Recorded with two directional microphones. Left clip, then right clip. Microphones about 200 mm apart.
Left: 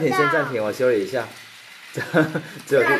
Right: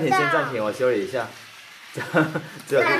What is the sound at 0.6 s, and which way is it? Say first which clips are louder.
Speech: left 2 dB; 30° left (ahead or behind).